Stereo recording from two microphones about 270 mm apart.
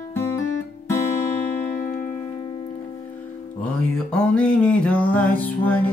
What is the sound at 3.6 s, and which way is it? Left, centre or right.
Music, centre.